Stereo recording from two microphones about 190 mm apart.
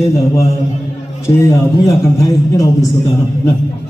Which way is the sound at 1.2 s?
15° left (ahead or behind).